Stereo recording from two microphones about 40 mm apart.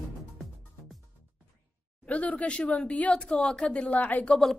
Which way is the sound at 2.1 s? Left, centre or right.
Left.